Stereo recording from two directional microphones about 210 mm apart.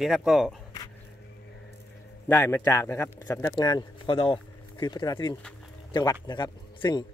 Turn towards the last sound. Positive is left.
turn(degrees=20)  # may be behind; listen again after turning